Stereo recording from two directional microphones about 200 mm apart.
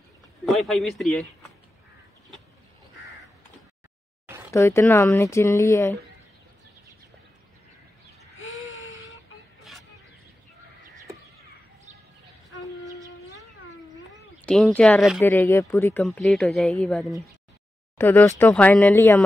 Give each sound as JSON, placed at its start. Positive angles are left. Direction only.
{"t": 0.5, "sound": "speech", "side_deg": 0}
{"t": 4.5, "sound": "speech", "side_deg": 15}
{"t": 8.4, "sound": "a sound", "side_deg": 75}
{"t": 14.4, "sound": "speech", "side_deg": 5}